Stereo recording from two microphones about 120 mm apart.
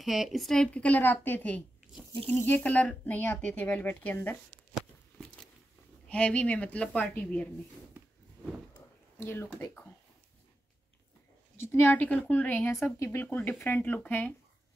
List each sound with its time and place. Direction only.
0.0 s a woman's voice: centre (ahead or behind); by 4.4 s 15° left (ahead or behind)
6.0 s a woman's voice: 10° left (ahead or behind)
8.0 s a sound: 15° right (ahead or behind)
9.2 s speech: 20° left (ahead or behind)
11.6 s a woman's voice: 15° left (ahead or behind)